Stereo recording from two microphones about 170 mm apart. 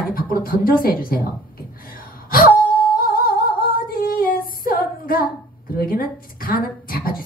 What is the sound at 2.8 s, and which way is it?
Singing, 60° left (ahead or behind).